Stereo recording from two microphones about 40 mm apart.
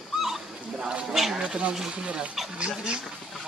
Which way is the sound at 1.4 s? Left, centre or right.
Right.